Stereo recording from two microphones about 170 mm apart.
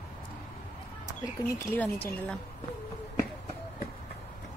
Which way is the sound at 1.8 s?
10° left (ahead or behind).